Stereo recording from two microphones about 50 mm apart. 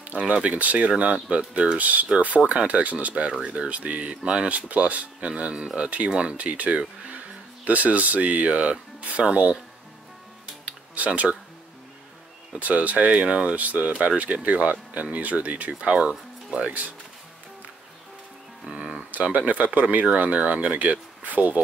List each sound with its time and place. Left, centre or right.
0.0 s speech: right
4.5 s speech: right
6.3 s speech: right
10.6 s music: right
12.5 s speech: right
15.7 s speech: centre
18.7 s speech: centre
19.1 s speech: right